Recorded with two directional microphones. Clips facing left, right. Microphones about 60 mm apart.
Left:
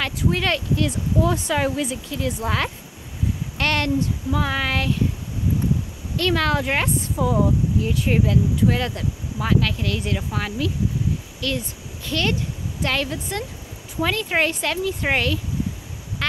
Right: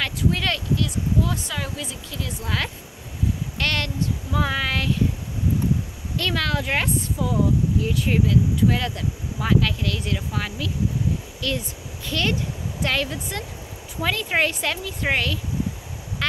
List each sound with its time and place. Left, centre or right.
0.0 s speech: centre
0.7 s speech: left
4.3 s speech: centre
6.3 s speech: centre
7.2 s speech: left
7.8 s speech: centre
8.1 s speech: centre
8.6 s speech: centre
9.8 s speech: centre
16.2 s quack: centre